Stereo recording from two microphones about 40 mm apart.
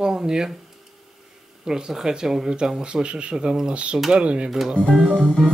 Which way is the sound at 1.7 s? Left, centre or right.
Centre.